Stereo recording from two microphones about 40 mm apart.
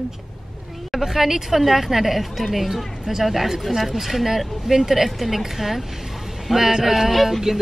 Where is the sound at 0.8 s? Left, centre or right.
Centre.